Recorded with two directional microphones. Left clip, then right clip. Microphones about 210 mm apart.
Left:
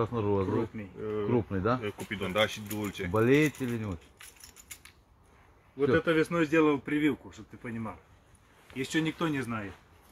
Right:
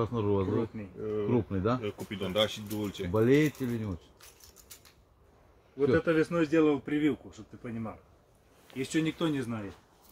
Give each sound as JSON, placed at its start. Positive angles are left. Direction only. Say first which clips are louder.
{"t": 0.0, "sound": "speech", "louder": "even", "side_deg": -20}
{"t": 0.7, "sound": "speech", "louder": "even", "side_deg": -5}
{"t": 1.3, "sound": "speech", "louder": "left 2 dB", "side_deg": -20}
{"t": 5.8, "sound": "speech", "louder": "even", "side_deg": 0}